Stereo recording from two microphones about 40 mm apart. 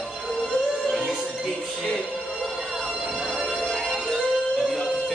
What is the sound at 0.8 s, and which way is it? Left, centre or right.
Music, centre.